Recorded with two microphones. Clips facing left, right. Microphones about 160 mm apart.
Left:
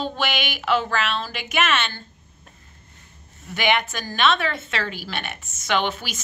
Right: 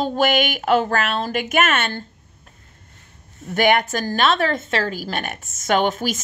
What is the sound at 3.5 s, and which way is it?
A woman's voice, 45° right (ahead or behind).